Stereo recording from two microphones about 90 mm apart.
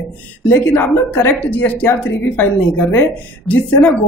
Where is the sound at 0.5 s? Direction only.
25° left (ahead or behind).